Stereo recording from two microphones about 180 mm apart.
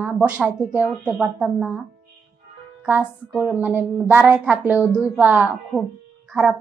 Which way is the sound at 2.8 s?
5° right (ahead or behind).